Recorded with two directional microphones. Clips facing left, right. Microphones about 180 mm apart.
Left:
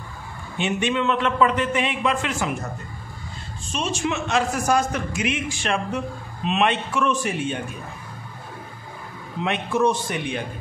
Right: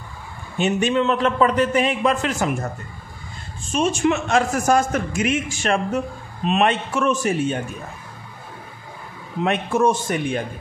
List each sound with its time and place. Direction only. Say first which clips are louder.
0.6 s a man's voice: right 4 dB; 40° right (ahead or behind)
3.7 s a man's voice: right 6 dB; 50° right (ahead or behind)
9.4 s a man's voice: right 2 dB; 45° right (ahead or behind)